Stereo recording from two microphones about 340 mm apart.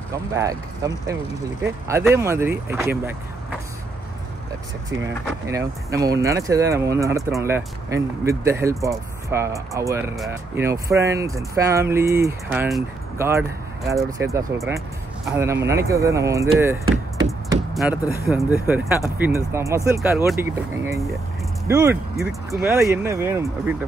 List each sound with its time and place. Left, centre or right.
0.3 s speech: centre
5.5 s speech: centre
16.8 s knock: right
18.2 s speech: centre